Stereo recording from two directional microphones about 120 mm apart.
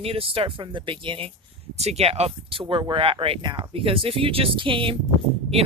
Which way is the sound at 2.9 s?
50° right (ahead or behind).